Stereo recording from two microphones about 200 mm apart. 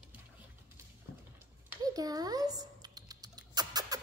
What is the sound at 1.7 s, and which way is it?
Typing, 20° right (ahead or behind).